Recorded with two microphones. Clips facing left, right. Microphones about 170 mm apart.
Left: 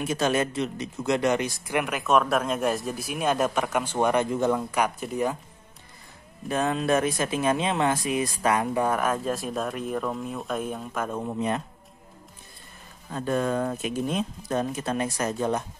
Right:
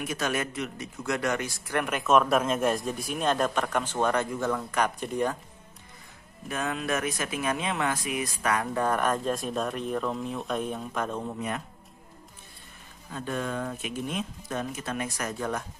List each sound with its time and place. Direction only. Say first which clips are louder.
0.0 s speech: left 5 dB; 30° left (ahead or behind)
1.8 s speech: even; centre (ahead or behind)
6.5 s speech: left 6 dB; 30° left (ahead or behind)
8.7 s speech: left 2 dB; 10° left (ahead or behind)
11.3 s speech: left 6 dB; 30° left (ahead or behind)
13.1 s speech: left 6 dB; 40° left (ahead or behind); by 15.6 s 20° left (ahead or behind)